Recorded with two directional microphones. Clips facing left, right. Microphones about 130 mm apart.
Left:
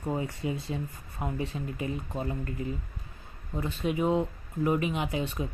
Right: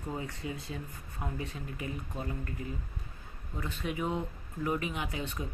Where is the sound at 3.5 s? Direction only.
25° left (ahead or behind).